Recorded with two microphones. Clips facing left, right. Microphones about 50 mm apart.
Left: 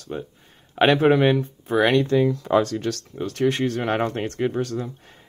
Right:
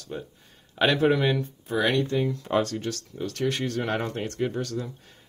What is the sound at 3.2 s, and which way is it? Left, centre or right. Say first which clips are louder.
Speech: left 6 dB; left.